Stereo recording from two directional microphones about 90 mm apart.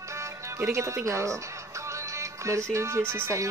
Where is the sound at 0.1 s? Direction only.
35° right (ahead or behind).